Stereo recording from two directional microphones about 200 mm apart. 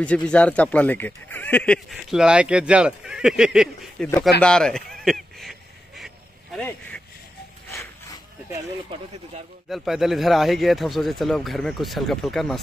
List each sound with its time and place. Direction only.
0.3 s speech: 5° left (ahead or behind)
4.4 s a sound: 5° left (ahead or behind)
8.9 s speech: 25° right (ahead or behind)
9.7 s speech: centre (ahead or behind)